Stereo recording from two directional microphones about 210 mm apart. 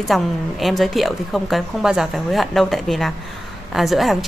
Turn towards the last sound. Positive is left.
turn(degrees=0)  # may be behind; listen again after turning